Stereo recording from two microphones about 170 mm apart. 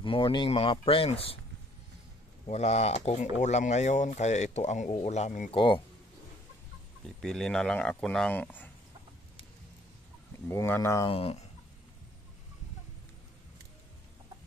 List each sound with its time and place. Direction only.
0.0 s speech: 30° left (ahead or behind)
2.4 s speech: 40° left (ahead or behind)
5.5 s speech: 30° left (ahead or behind)
7.2 s speech: 5° left (ahead or behind)
10.5 s speech: 15° left (ahead or behind)
11.1 s speech: 35° left (ahead or behind)